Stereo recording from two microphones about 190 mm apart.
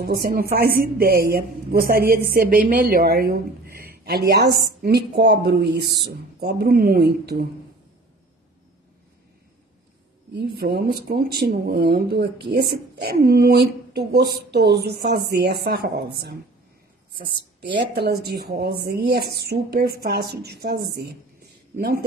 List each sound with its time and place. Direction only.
0.0 s a woman's voice: 55° right (ahead or behind)
10.3 s a woman's voice: 55° right (ahead or behind)